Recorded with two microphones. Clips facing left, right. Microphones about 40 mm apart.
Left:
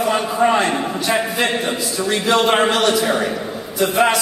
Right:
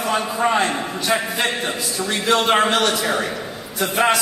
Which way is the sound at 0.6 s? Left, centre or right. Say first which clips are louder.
Left 2 dB; left.